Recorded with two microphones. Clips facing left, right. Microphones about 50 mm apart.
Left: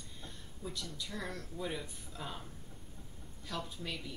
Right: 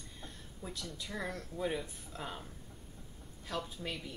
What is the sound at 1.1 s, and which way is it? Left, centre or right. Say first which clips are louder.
Speech: right 4 dB; right.